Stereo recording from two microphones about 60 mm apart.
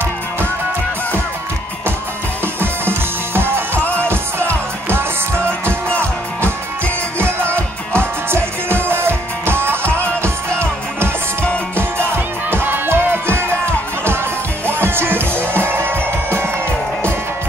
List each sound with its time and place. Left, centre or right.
2.4 s music: right
7.2 s music: right
14.7 s music: right